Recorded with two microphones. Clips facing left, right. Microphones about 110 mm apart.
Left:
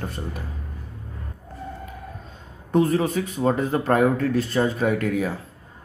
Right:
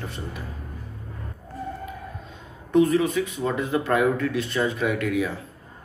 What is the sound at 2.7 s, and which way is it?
Speech, 40° left (ahead or behind).